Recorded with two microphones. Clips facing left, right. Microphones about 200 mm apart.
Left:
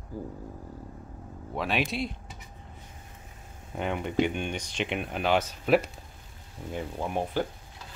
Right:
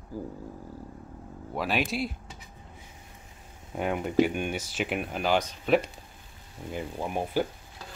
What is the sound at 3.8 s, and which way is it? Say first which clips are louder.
Speech: right 3 dB; 5° right (ahead or behind).